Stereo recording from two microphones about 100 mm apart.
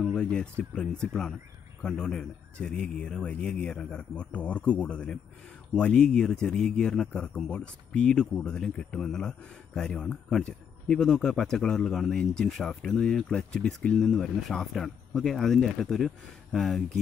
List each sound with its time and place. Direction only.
0.1 s a man's voice: 10° left (ahead or behind)